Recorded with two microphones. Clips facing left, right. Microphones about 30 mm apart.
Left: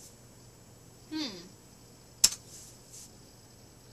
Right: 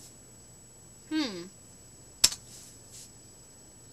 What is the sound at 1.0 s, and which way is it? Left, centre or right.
Speech, right.